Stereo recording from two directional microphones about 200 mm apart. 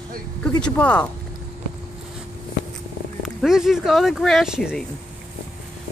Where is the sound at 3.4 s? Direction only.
Centre (ahead or behind).